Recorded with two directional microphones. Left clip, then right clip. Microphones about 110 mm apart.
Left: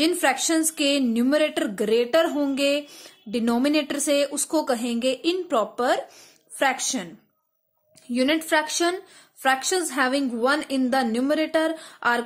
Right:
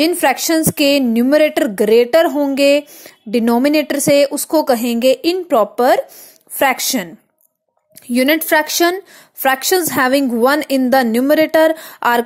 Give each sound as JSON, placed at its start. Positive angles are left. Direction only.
{"t": 0.0, "sound": "a woman's voice", "side_deg": -55}
{"t": 8.1, "sound": "a woman's voice", "side_deg": -70}